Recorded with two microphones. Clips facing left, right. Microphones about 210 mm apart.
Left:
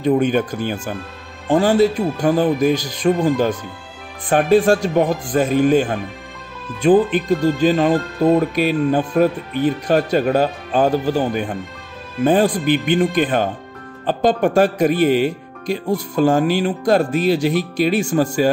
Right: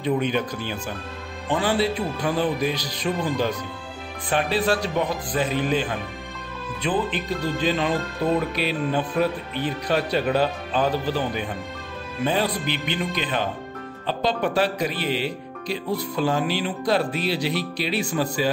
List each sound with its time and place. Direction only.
0.0 s speech: 45° left (ahead or behind)